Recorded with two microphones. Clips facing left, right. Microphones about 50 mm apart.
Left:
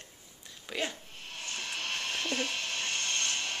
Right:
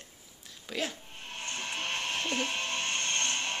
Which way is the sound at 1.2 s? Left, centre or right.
Right.